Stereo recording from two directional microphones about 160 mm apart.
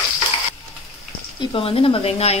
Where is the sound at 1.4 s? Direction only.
35° left (ahead or behind).